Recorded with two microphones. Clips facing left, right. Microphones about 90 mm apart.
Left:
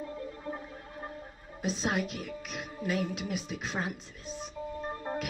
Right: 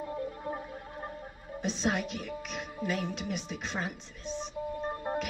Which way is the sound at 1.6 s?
Centre (ahead or behind).